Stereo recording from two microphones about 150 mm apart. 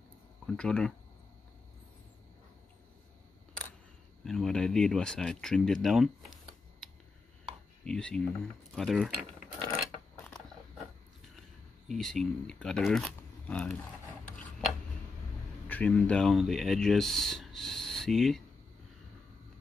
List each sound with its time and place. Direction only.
0.5 s speech: 5° left (ahead or behind)
4.2 s speech: centre (ahead or behind)
7.8 s speech: 5° left (ahead or behind)
9.7 s coin: 20° left (ahead or behind)
11.9 s speech: centre (ahead or behind)
15.7 s speech: 10° left (ahead or behind)